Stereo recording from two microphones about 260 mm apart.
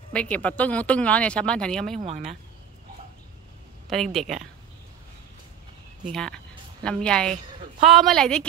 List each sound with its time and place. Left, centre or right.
0.1 s speech: centre
2.0 s speech: right
3.9 s speech: centre
6.1 s a woman's voice: centre